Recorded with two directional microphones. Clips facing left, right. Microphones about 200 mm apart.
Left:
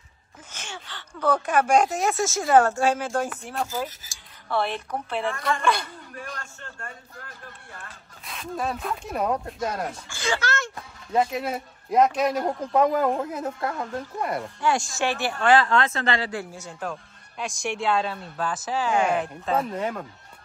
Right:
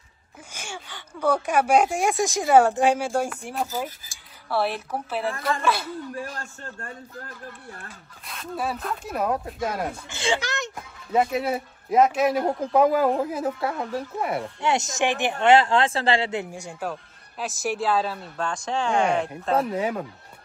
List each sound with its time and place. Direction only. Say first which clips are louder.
0.5 s speech: right 2 dB; 10° right (ahead or behind)
6.4 s a man's voice: right 3 dB; 35° right (ahead or behind)
8.3 s speech: even; 5° right (ahead or behind)
10.0 s speech: right 1 dB; 20° right (ahead or behind)
11.1 s speech: right 2 dB; 5° right (ahead or behind)
14.6 s speech: right 1 dB; 20° right (ahead or behind)
17.4 s speech: right 2 dB; 5° right (ahead or behind)